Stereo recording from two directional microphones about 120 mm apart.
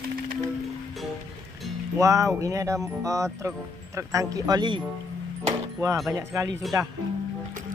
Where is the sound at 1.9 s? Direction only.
25° right (ahead or behind).